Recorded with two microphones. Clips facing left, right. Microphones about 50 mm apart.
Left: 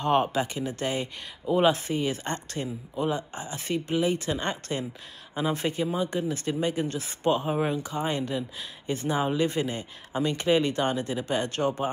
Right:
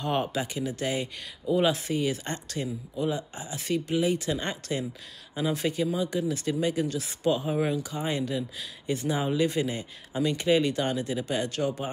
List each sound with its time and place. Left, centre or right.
0.0 s speech: left